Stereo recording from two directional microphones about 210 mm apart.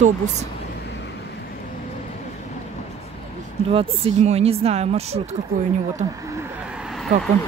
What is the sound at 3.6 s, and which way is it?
Speech, 25° right (ahead or behind).